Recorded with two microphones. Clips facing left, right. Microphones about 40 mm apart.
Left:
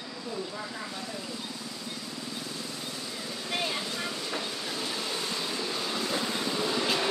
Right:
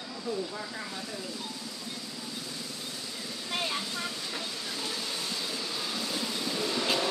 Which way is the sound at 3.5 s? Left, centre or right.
Centre.